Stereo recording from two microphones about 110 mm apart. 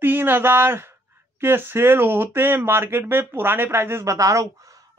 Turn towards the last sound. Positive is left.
turn(degrees=-30)  # may be behind; listen again after turning